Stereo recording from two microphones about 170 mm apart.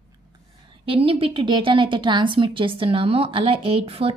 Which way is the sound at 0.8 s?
35° right (ahead or behind).